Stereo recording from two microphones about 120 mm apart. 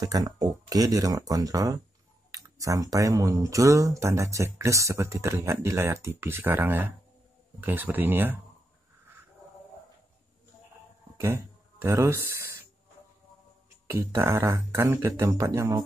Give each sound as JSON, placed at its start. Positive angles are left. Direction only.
{"t": 0.0, "sound": "speech", "side_deg": -30}
{"t": 11.1, "sound": "speech", "side_deg": -20}
{"t": 13.8, "sound": "speech", "side_deg": -25}